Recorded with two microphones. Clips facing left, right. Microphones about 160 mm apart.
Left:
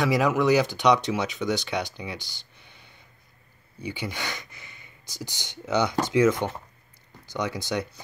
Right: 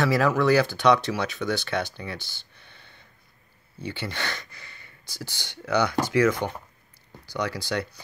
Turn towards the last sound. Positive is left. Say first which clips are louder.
# even
turn(degrees=20)  # may be behind; listen again after turning